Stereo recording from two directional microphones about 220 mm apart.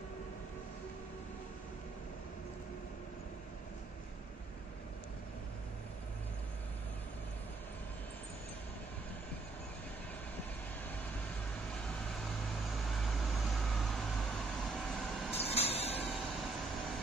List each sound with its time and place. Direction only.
11.8 s vehicle: centre (ahead or behind)
15.3 s a sound: 25° left (ahead or behind)
16.1 s vehicle: centre (ahead or behind)